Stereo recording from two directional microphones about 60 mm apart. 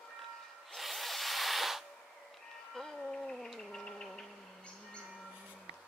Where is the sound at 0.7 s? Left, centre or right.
Centre.